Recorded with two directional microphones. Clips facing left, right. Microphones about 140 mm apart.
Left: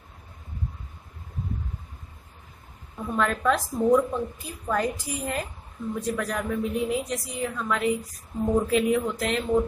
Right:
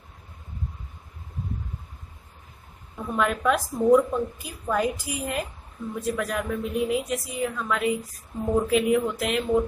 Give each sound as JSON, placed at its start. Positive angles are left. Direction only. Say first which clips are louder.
{"t": 3.1, "sound": "a woman's voice", "louder": "right 1 dB", "side_deg": -10}